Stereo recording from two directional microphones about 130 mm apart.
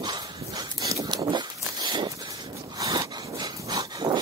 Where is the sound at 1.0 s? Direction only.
35° right (ahead or behind).